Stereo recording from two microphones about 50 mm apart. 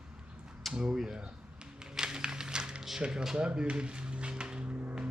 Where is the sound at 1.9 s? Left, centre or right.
Centre.